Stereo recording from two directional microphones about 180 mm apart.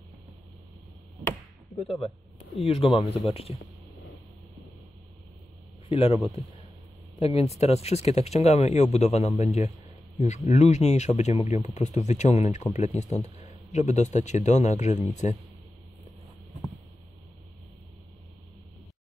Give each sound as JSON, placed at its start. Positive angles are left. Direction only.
{"t": 2.6, "sound": "speech", "side_deg": 30}
{"t": 5.9, "sound": "speech", "side_deg": 35}